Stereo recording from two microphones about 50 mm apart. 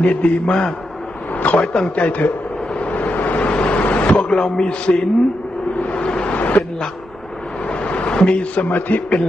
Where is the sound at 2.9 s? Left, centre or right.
Left.